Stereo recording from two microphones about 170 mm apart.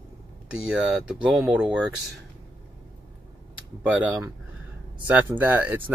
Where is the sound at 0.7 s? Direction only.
5° right (ahead or behind).